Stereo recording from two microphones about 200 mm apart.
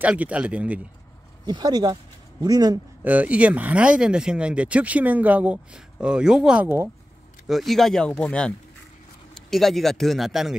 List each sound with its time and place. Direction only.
0.0 s speech: 5° right (ahead or behind)
1.4 s speech: 20° right (ahead or behind); by 10.6 s centre (ahead or behind)